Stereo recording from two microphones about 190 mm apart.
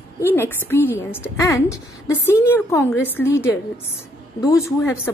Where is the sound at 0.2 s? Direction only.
10° left (ahead or behind).